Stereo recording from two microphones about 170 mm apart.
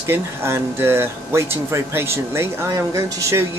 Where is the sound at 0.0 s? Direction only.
15° right (ahead or behind).